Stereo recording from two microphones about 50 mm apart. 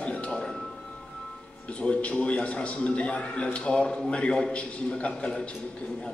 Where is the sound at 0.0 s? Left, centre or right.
Left.